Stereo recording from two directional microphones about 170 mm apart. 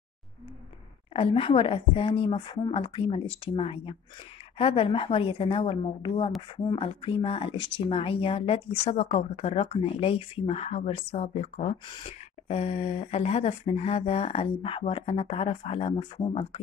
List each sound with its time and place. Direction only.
1.1 s speech: 30° left (ahead or behind)